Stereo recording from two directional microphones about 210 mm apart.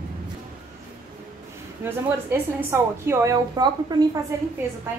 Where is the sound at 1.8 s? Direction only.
10° right (ahead or behind).